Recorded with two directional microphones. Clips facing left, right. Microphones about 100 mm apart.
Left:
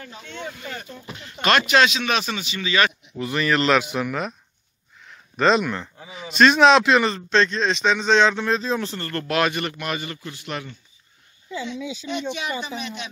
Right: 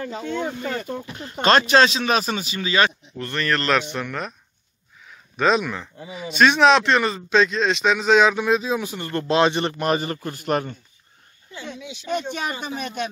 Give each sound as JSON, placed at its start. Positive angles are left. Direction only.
{"t": 0.0, "sound": "speech", "side_deg": -40}
{"t": 3.2, "sound": "speech", "side_deg": 5}
{"t": 5.0, "sound": "a sound", "side_deg": 0}
{"t": 6.3, "sound": "speech", "side_deg": 0}